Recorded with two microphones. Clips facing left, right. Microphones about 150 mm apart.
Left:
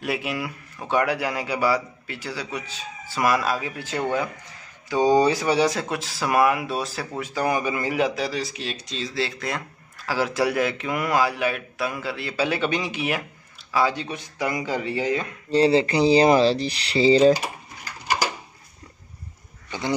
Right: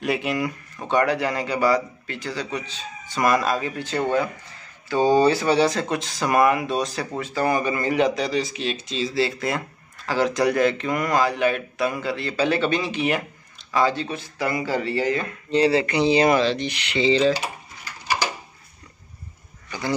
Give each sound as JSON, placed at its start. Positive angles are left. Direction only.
{"t": 0.0, "sound": "speech", "side_deg": 5}
{"t": 15.5, "sound": "speech", "side_deg": 30}